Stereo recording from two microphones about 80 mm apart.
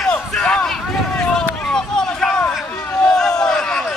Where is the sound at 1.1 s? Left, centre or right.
Centre.